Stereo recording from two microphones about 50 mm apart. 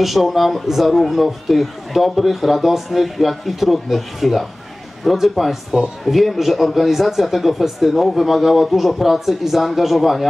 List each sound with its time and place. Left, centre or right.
0.0 s a man's voice: centre